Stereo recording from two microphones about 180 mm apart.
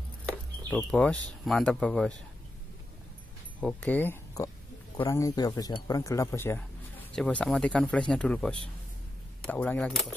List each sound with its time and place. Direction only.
0.7 s speech: 5° left (ahead or behind)
3.6 s speech: 10° left (ahead or behind)